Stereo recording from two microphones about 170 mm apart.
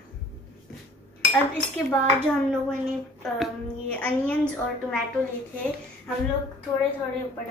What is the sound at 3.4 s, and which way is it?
A woman's voice, 10° left (ahead or behind).